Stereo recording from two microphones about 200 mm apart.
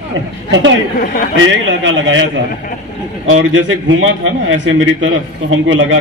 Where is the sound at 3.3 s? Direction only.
75° right (ahead or behind).